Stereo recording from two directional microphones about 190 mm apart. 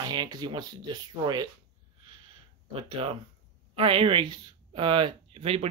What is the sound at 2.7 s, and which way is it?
Speech, 30° right (ahead or behind).